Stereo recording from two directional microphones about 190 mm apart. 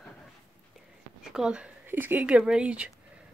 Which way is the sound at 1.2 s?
5° right (ahead or behind).